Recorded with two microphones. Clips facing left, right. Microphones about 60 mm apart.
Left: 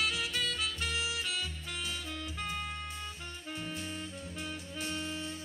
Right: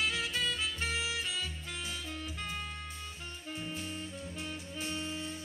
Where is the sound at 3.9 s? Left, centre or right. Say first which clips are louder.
Even; centre.